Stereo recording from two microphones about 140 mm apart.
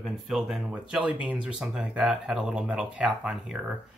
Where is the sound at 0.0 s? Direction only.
Centre (ahead or behind).